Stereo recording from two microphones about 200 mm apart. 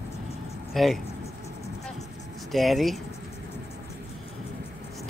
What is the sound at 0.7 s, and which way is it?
Speech, centre (ahead or behind).